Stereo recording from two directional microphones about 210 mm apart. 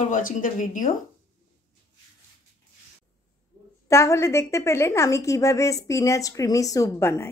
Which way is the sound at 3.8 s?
15° left (ahead or behind).